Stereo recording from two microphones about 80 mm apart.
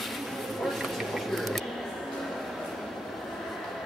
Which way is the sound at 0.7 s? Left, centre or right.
Centre.